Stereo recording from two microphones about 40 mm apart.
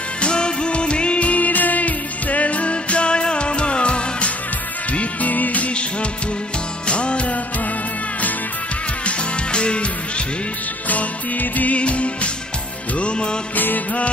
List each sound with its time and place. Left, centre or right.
0.2 s music: left
4.9 s music: left
6.9 s music: left
9.0 s music: left
10.9 s music: left